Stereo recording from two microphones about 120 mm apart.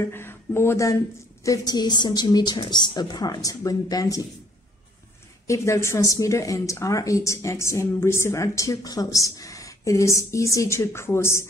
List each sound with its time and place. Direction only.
0.0 s a woman's voice: 20° left (ahead or behind)
5.5 s a woman's voice: 25° left (ahead or behind)